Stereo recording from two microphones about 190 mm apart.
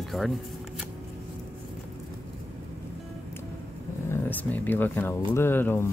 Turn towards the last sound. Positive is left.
turn(degrees=10)  # may be behind; listen again after turning